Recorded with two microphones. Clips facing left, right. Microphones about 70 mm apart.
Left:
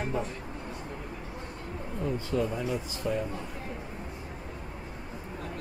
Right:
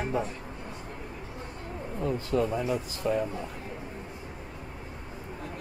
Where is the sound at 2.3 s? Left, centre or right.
Right.